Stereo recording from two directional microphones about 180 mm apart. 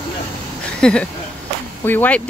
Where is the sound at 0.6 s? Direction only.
5° left (ahead or behind).